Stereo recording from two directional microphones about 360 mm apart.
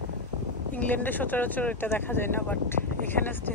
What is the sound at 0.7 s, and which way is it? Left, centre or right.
Speech, centre.